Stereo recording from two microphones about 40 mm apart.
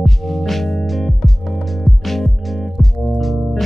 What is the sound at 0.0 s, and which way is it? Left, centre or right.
Music, centre.